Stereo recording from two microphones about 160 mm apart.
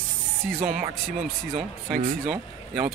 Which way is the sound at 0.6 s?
55° right (ahead or behind).